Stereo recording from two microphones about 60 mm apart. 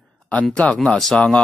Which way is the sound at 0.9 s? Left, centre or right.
Centre.